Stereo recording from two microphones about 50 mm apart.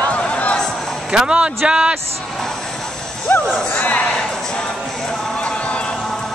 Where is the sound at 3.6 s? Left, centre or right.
Left.